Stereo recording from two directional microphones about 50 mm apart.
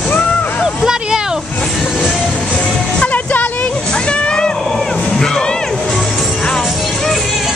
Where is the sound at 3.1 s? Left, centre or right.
Left.